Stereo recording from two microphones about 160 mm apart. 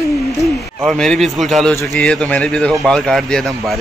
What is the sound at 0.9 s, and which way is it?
A man's voice, centre (ahead or behind).